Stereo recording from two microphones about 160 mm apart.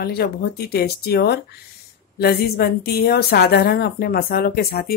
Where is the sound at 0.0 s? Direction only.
80° left.